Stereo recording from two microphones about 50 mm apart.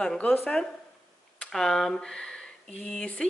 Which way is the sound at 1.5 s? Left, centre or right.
Centre.